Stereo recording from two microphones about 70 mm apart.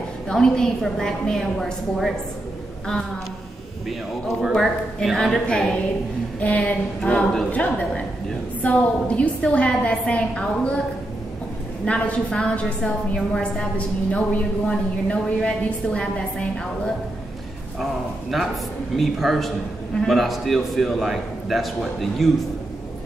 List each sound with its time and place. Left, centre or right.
0.3 s a woman's voice: centre
4.6 s a man's voice: centre
11.8 s a woman's voice: centre
18.9 s a man's voice: centre